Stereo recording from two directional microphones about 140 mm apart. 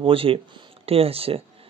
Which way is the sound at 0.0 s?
40° right (ahead or behind).